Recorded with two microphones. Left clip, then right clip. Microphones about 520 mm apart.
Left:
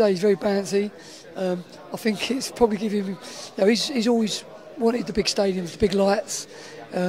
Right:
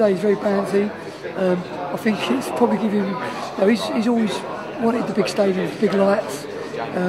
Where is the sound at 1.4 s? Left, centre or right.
Left.